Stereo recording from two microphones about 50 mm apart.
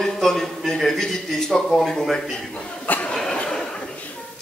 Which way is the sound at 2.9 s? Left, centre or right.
Left.